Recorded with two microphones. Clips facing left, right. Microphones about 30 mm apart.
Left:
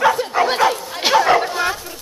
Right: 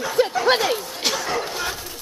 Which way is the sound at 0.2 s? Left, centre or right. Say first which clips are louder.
Right 5 dB; centre.